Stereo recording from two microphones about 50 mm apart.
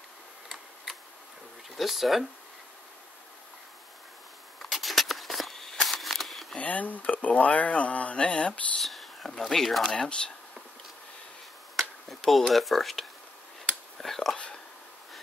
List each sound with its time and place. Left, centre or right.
1.8 s speech: centre
4.6 s a sound: centre
6.5 s speech: left
8.8 s whispering: centre
9.4 s speech: centre
9.8 s speech: centre
12.3 s speech: centre
13.9 s speech: centre